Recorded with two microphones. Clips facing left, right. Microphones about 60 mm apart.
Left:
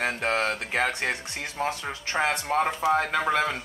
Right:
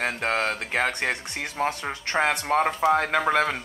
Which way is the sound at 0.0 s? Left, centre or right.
Centre.